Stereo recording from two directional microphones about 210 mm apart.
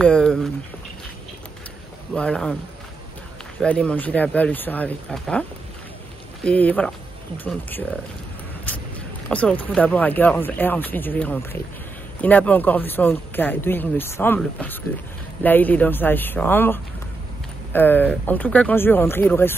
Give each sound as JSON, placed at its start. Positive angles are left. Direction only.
{"t": 0.0, "sound": "speech", "side_deg": 5}
{"t": 2.1, "sound": "speech", "side_deg": 5}
{"t": 3.6, "sound": "speech", "side_deg": 5}
{"t": 6.4, "sound": "speech", "side_deg": 5}
{"t": 8.7, "sound": "a sound", "side_deg": 10}
{"t": 9.3, "sound": "speech", "side_deg": 5}